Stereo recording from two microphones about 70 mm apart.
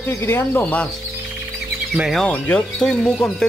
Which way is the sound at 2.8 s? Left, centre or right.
Centre.